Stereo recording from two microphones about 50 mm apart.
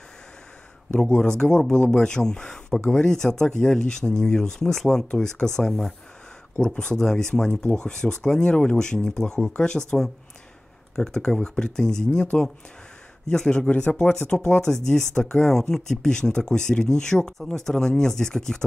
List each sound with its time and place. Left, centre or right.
1.0 s speech: centre
6.5 s speech: centre
11.0 s speech: centre
13.3 s speech: centre